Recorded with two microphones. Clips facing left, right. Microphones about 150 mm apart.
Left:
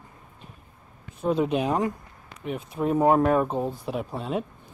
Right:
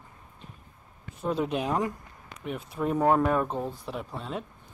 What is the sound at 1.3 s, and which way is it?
Speech, centre (ahead or behind).